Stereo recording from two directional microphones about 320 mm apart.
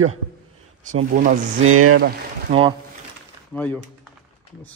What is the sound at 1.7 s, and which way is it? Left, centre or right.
Speech, right.